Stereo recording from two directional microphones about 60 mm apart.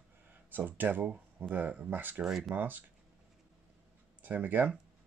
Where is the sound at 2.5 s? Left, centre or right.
Right.